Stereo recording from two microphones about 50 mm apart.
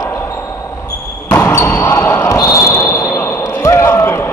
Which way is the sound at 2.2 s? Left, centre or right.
Left.